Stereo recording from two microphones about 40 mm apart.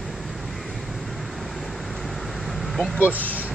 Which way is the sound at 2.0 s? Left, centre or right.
Centre.